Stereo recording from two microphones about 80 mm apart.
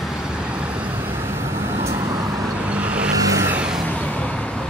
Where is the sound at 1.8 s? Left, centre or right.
Right.